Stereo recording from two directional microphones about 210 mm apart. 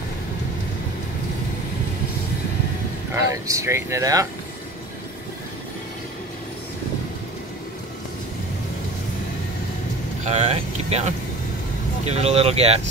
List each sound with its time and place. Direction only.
3.3 s speech: 15° right (ahead or behind)
10.2 s speech: 30° right (ahead or behind)